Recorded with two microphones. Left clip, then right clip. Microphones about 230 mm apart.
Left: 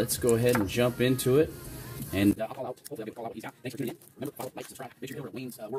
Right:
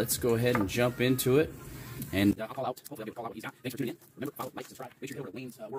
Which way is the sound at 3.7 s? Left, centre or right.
Centre.